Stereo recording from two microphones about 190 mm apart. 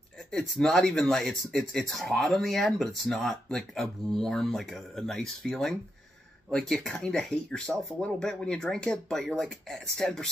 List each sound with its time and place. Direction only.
0.3 s speech: 5° left (ahead or behind)